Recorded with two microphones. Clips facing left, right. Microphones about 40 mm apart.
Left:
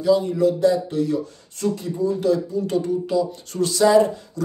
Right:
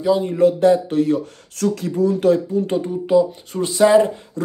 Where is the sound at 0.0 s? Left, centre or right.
Right.